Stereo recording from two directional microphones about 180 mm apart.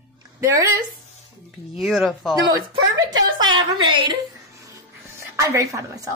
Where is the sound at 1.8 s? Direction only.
Centre (ahead or behind).